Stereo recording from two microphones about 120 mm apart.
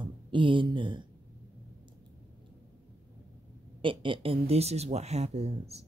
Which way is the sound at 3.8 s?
45° right (ahead or behind).